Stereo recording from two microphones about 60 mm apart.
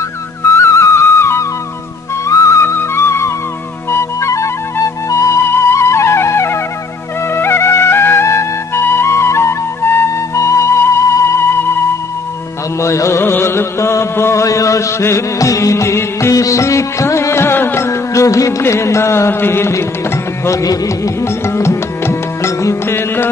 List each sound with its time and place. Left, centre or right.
0.5 s music: left
2.6 s music: left
3.9 s flute: left
7.3 s music: left
10.3 s music: left
12.8 s music: left
13.2 s music: left
14.4 s a sound: left
15.3 s music: left
17.8 s music: left
18.6 s music: left
20.4 s music: left
21.2 s music: left